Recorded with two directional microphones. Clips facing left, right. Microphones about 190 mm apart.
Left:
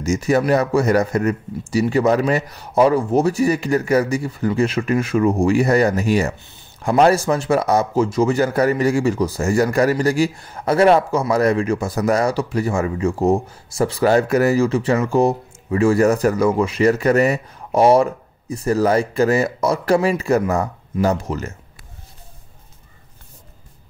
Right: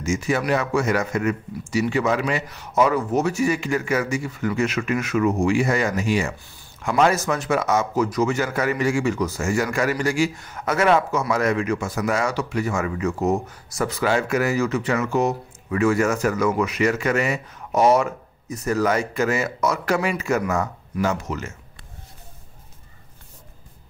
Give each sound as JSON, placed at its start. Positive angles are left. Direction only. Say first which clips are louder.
{"t": 0.0, "sound": "speech", "louder": "left 5 dB", "side_deg": 40}
{"t": 6.4, "sound": "a sound", "louder": "left 2 dB", "side_deg": 20}
{"t": 6.9, "sound": "speech", "louder": "left 5 dB", "side_deg": 35}